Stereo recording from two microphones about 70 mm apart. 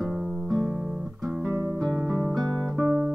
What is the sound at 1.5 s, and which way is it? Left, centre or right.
Music, right.